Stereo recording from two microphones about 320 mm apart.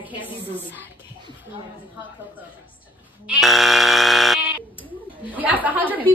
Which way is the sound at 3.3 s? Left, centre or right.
Centre.